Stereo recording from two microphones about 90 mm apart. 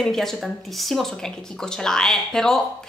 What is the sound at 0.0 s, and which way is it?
A woman's voice, 5° left (ahead or behind).